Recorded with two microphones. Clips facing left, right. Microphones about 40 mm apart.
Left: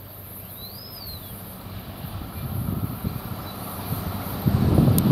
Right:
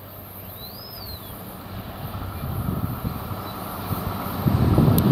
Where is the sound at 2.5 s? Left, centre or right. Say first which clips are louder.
Right 1 dB; right.